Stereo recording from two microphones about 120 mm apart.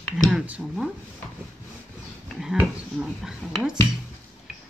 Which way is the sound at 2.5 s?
10° right (ahead or behind).